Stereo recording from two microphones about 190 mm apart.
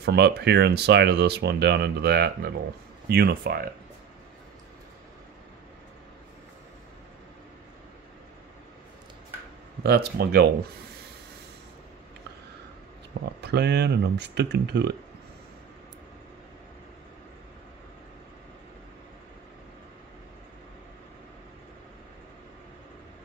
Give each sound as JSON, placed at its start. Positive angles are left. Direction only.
{"t": 0.0, "sound": "speech", "side_deg": -60}
{"t": 9.8, "sound": "speech", "side_deg": -60}
{"t": 13.2, "sound": "speech", "side_deg": -60}